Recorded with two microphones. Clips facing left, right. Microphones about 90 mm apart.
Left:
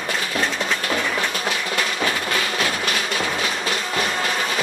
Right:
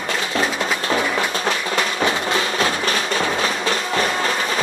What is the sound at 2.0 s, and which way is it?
Music, 30° right (ahead or behind).